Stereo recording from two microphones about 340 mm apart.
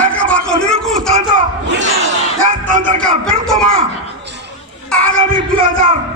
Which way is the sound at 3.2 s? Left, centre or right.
Centre.